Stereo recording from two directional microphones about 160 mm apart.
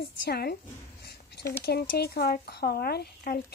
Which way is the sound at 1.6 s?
80° left.